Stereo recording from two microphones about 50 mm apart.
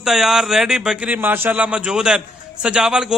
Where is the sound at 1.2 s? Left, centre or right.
Right.